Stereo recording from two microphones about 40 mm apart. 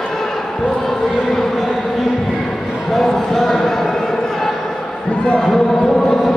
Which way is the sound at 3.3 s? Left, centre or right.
Centre.